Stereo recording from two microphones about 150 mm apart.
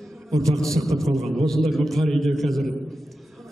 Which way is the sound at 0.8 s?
Centre (ahead or behind).